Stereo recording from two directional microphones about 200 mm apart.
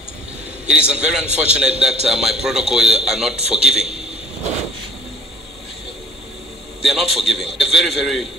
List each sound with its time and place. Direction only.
0.7 s a man's voice: 5° right (ahead or behind)
3.3 s a man's voice: 30° right (ahead or behind)
3.6 s a man's voice: 5° right (ahead or behind)
6.8 s a man's voice: centre (ahead or behind)